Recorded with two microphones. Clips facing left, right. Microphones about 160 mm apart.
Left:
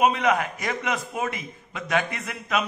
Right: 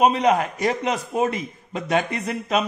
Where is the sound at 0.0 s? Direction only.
35° right (ahead or behind).